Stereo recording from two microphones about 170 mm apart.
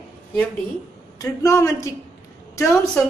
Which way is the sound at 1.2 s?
20° left (ahead or behind).